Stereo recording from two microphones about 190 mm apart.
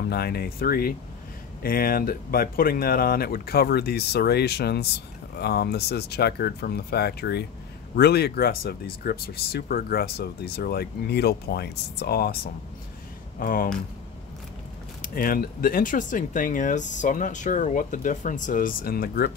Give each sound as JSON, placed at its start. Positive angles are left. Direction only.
{"t": 0.1, "sound": "speech", "side_deg": 55}
{"t": 13.4, "sound": "speech", "side_deg": 45}
{"t": 15.0, "sound": "speech", "side_deg": 50}